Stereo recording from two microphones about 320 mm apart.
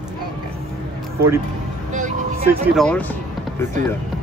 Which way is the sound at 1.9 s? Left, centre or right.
Right.